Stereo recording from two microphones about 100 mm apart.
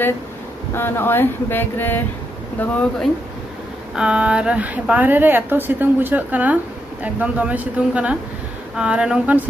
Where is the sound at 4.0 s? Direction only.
10° right (ahead or behind).